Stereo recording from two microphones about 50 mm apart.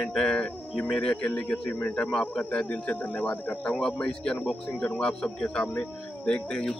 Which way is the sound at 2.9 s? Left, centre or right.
Left.